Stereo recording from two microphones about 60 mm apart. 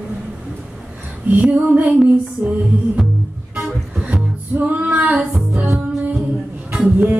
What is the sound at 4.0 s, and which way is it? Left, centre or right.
Music, centre.